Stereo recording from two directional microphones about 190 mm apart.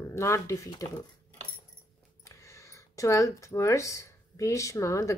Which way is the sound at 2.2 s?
15° left (ahead or behind).